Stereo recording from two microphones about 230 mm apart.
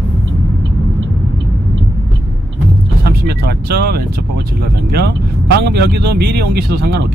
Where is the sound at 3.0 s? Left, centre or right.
Right.